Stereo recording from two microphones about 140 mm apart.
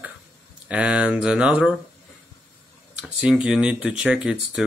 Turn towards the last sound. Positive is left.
turn(degrees=-5)  # may be behind; listen again after turning